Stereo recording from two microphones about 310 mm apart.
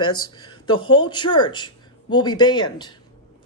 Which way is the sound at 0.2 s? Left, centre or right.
Centre.